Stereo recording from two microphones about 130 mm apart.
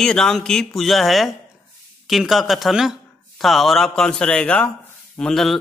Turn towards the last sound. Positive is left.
turn(degrees=0)  # may be behind; listen again after turning